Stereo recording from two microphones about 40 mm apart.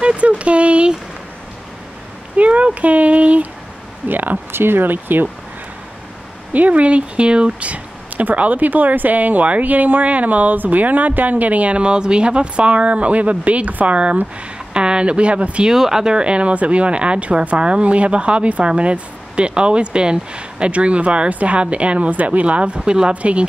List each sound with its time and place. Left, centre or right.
0.0 s a sound: right
2.3 s speech: right
4.1 s speech: right
4.5 s speech: right
6.5 s speech: right
7.7 s speech: right
14.7 s speech: right
15.7 s speech: centre; by 23.4 s right